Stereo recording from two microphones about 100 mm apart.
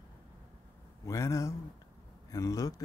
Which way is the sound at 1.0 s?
30° left (ahead or behind).